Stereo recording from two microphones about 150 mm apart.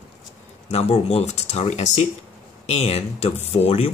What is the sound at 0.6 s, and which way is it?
Speech, 45° left (ahead or behind).